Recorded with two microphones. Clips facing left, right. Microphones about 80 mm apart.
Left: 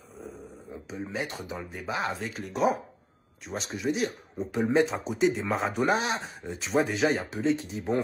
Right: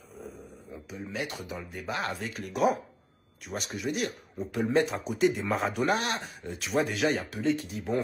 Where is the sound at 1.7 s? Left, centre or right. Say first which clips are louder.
Left 2 dB; centre.